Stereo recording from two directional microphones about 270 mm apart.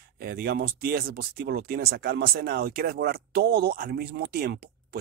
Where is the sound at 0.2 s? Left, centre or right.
Right.